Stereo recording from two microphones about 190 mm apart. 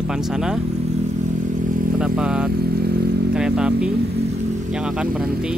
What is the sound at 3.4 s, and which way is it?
Speech, 5° right (ahead or behind).